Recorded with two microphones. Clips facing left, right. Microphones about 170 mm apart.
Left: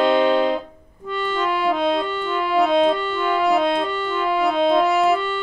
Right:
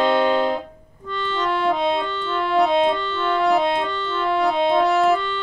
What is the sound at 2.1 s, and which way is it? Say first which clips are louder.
Music: left 1 dB; 10° left (ahead or behind).